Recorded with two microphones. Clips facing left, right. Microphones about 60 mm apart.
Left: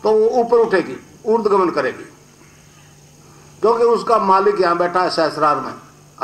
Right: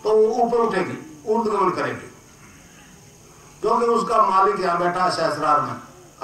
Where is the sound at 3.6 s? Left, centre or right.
Left.